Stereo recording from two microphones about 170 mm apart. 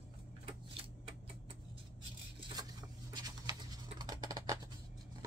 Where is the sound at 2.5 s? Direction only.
25° right (ahead or behind).